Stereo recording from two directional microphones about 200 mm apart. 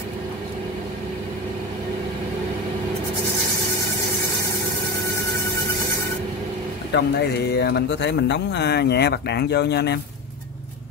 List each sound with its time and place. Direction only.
6.9 s speech: 55° left (ahead or behind)